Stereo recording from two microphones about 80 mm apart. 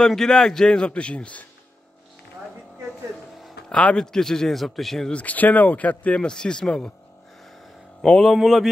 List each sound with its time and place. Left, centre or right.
0.0 s speech: centre
3.4 s speech: centre
5.2 s speech: centre
8.0 s a man's voice: centre